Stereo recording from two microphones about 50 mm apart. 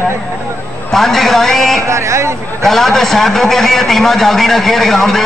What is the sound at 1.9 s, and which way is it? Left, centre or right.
Speech, right.